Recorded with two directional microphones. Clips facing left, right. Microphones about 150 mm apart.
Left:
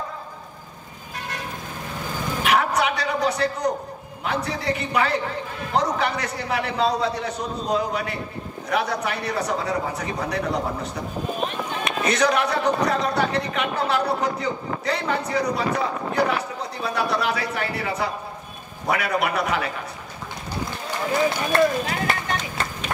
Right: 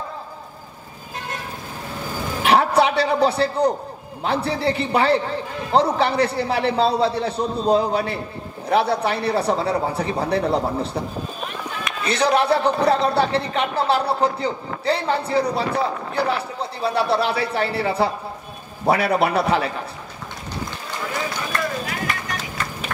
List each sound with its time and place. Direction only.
2.4 s a sound: 30° right (ahead or behind)
4.2 s speech: 30° right (ahead or behind)
12.0 s speech: 30° right (ahead or behind)
21.5 s speech: 30° left (ahead or behind)
22.6 s music: 30° left (ahead or behind)